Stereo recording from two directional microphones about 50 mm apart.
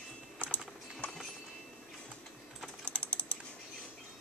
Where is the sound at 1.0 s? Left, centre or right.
Left.